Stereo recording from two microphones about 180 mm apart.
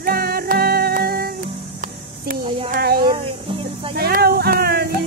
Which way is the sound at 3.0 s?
25° right (ahead or behind).